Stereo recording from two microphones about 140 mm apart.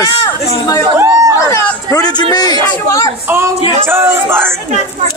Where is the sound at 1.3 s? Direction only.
25° left (ahead or behind).